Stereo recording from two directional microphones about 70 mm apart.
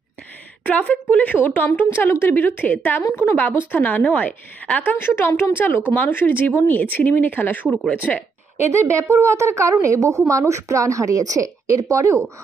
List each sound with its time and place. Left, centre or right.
0.7 s speech: left
4.9 s speech: left
8.5 s a woman's voice: right